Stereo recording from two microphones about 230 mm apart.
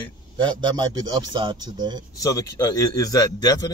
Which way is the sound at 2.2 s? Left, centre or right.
Centre.